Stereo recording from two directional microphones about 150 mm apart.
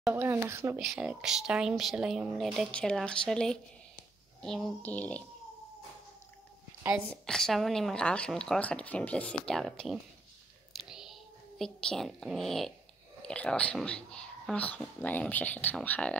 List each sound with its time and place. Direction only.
0.1 s speech: 15° right (ahead or behind)
0.7 s a woman's voice: 5° right (ahead or behind)
7.1 s a woman's voice: 5° left (ahead or behind)
10.7 s a sound: centre (ahead or behind)
13.2 s speech: 5° left (ahead or behind)